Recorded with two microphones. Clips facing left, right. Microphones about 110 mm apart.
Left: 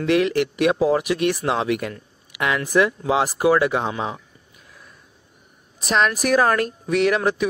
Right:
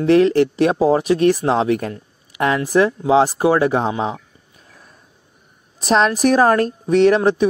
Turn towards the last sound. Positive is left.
turn(degrees=-30)  # may be behind; listen again after turning